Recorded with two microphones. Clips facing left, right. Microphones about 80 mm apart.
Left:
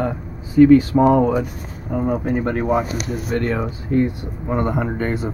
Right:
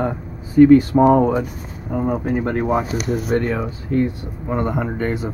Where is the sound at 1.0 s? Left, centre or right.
Centre.